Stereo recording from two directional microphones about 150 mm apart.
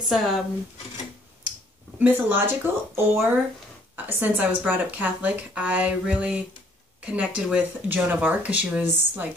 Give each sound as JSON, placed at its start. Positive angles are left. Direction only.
{"t": 0.1, "sound": "speech", "side_deg": 0}
{"t": 2.0, "sound": "speech", "side_deg": -10}